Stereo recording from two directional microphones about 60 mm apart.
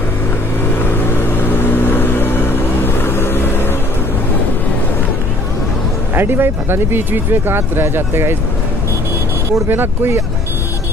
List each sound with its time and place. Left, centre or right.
0.7 s vehicle: left
6.1 s speech: right
9.7 s speech: right